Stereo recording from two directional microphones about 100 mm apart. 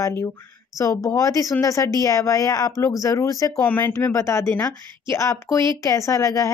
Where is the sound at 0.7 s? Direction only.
35° left (ahead or behind).